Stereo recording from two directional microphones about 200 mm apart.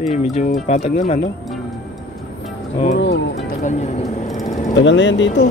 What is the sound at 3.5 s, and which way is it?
Vehicle, 35° left (ahead or behind).